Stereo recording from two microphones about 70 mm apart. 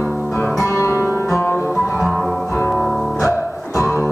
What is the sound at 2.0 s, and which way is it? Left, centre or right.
Music, centre.